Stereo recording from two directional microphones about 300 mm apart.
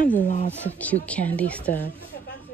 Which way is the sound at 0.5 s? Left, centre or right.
Centre.